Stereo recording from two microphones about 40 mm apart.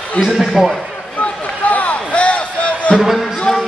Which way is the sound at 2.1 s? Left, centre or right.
Left.